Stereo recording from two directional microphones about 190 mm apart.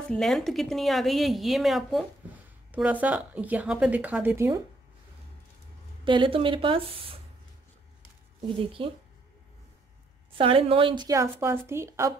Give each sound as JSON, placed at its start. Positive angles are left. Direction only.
{"t": 0.1, "sound": "a woman's voice", "side_deg": 0}
{"t": 6.0, "sound": "speech", "side_deg": -25}
{"t": 8.4, "sound": "speech", "side_deg": -30}
{"t": 10.3, "sound": "a woman's voice", "side_deg": -30}